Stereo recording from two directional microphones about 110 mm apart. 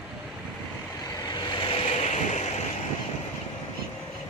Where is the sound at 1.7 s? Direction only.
80° left.